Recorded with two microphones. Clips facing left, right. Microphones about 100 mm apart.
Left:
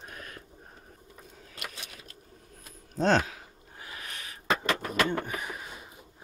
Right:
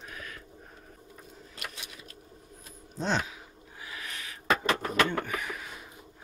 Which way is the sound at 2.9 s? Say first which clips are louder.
Left 6 dB; 45° left (ahead or behind).